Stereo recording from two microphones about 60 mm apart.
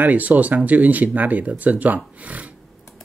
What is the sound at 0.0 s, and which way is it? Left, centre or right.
Speech, right.